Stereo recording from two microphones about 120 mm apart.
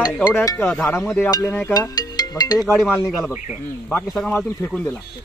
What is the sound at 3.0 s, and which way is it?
Speech, centre (ahead or behind).